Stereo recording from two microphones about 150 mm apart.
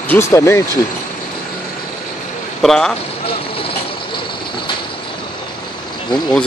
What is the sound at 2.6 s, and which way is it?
Speech, 5° left (ahead or behind).